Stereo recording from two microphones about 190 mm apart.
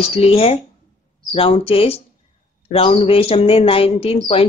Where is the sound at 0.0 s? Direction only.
30° left (ahead or behind).